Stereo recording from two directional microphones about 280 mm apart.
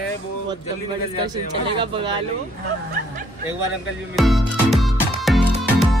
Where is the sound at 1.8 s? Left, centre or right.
Centre.